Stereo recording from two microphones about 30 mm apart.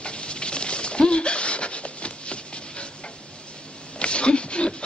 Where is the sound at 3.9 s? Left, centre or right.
Left.